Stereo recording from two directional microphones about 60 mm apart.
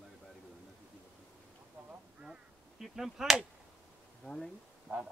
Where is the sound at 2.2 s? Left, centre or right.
Centre.